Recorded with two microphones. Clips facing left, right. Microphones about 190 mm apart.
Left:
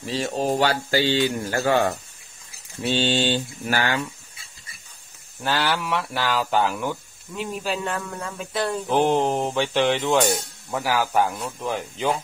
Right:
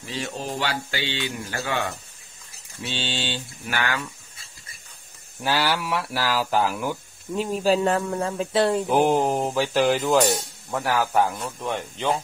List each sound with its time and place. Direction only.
0.0 s speech: 35° left (ahead or behind)
2.9 s mantra: 45° left (ahead or behind)
5.4 s speech: 10° right (ahead or behind)
7.3 s speech: 35° right (ahead or behind)
8.8 s speech: 5° right (ahead or behind)